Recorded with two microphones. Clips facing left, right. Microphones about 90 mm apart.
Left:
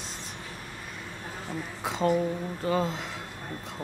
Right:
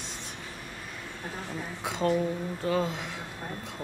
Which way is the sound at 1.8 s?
Centre (ahead or behind).